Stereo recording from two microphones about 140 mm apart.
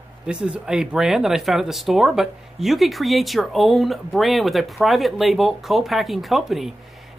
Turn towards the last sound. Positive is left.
turn(degrees=0)  # may be behind; listen again after turning